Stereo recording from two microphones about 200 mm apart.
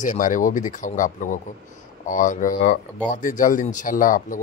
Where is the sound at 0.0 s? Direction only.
40° left (ahead or behind).